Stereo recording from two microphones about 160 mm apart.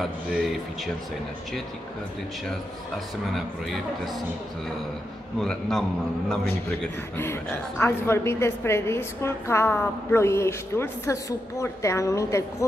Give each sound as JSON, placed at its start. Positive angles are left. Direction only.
{"t": 0.0, "sound": "a man's voice", "side_deg": 0}
{"t": 3.3, "sound": "a man's voice", "side_deg": 0}
{"t": 5.4, "sound": "a man's voice", "side_deg": 0}
{"t": 7.8, "sound": "a woman's voice", "side_deg": 15}